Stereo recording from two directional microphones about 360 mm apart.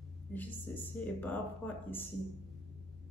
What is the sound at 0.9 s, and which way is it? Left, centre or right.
Speech, centre.